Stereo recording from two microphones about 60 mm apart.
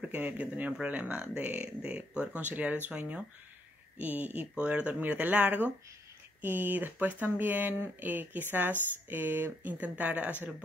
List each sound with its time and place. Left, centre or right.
0.0 s speech: right